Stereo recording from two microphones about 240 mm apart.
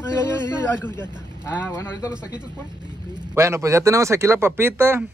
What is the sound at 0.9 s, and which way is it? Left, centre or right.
Speech, centre.